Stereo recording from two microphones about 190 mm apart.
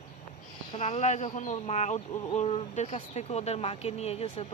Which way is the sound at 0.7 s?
35° left (ahead or behind).